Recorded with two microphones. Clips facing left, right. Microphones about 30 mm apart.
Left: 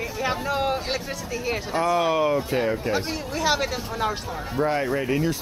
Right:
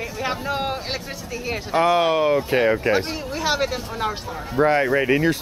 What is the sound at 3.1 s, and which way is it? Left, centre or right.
Speech, centre.